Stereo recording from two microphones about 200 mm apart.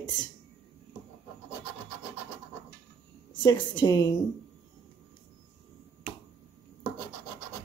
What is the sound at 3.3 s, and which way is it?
Speech, 20° left (ahead or behind).